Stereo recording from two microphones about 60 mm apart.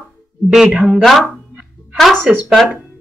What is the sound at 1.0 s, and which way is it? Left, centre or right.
Speech, centre.